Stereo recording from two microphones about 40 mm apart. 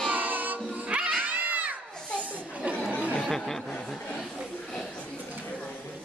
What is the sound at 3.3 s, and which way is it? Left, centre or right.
Chuckle, centre.